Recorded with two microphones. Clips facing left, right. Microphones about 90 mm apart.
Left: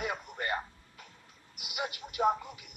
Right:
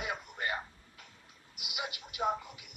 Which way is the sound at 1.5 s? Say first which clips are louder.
Left 3 dB; 45° left (ahead or behind).